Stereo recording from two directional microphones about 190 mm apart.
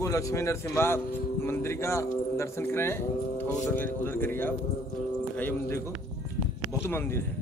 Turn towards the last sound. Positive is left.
turn(degrees=15)  # may be behind; listen again after turning